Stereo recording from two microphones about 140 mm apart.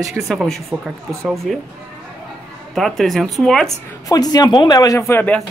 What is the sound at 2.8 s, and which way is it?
Speech, centre (ahead or behind).